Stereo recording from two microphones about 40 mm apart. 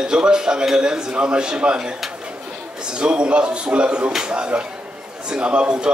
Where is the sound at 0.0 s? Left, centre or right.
Centre.